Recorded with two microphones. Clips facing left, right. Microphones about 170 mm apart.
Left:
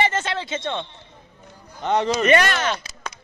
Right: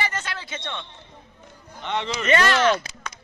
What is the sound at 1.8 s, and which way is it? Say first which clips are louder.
Speech: left 7 dB; 40° left (ahead or behind).